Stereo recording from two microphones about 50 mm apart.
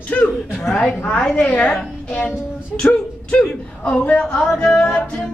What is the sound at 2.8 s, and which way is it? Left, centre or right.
Speech, left.